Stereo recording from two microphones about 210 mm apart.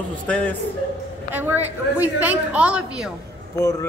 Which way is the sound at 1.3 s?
10° right (ahead or behind).